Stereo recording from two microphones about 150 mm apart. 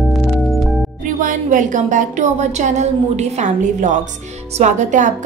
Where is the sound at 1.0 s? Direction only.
65° right (ahead or behind).